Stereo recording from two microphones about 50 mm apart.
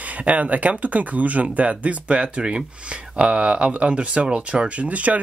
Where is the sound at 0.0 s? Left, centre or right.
Right.